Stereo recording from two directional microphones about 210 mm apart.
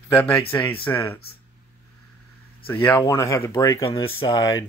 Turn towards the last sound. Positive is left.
turn(degrees=20)  # may be behind; listen again after turning